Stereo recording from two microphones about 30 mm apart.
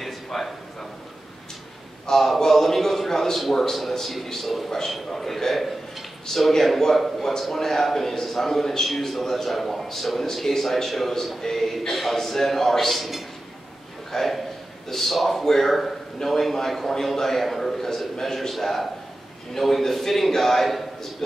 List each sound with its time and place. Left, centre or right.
0.0 s a sound: centre
2.0 s a man's voice: centre
4.6 s a man's voice: centre